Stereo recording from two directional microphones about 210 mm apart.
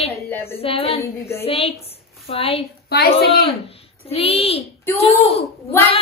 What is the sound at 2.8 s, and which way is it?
Speech, 50° left (ahead or behind).